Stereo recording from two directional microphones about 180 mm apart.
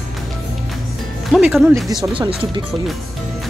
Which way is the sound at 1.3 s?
Centre (ahead or behind).